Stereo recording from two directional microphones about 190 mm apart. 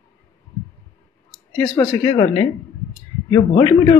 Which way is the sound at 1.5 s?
15° left (ahead or behind).